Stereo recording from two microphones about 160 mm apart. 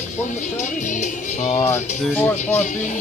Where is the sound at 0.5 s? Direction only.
50° left (ahead or behind).